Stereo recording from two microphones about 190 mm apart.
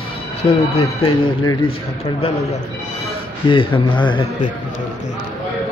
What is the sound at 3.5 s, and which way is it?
Speech, 25° left (ahead or behind).